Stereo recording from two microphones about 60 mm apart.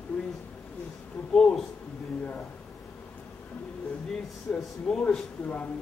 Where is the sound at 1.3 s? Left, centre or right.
Centre.